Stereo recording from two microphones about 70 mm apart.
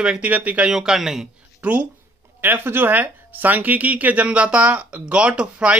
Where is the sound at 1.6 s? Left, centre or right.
Centre.